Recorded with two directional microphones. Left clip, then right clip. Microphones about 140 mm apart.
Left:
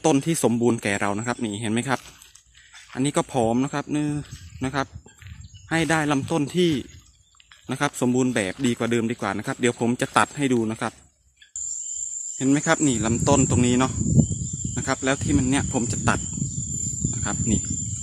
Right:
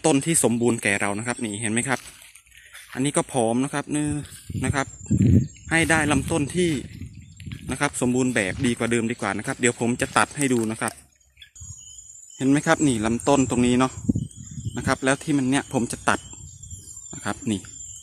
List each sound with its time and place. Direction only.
0.0 s speech: centre (ahead or behind)
6.5 s speech: 15° left (ahead or behind)
7.6 s speech: centre (ahead or behind)
12.4 s speech: 15° right (ahead or behind)